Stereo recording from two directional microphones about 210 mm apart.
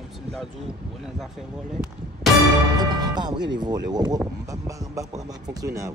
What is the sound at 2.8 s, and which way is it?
Speech, 20° right (ahead or behind).